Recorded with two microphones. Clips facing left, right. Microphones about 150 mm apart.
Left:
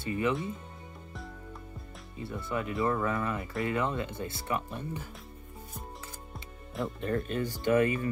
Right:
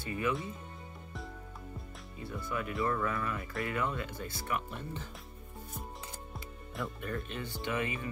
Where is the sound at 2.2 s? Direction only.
25° left (ahead or behind).